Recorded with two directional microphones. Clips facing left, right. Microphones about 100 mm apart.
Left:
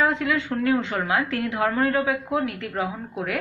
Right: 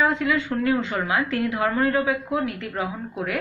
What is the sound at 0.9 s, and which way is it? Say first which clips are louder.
A woman's voice: even; 55° left (ahead or behind).